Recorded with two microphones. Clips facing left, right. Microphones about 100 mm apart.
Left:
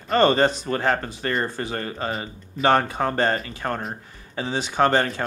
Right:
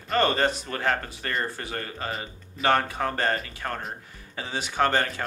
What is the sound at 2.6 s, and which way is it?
Speech, 25° left (ahead or behind).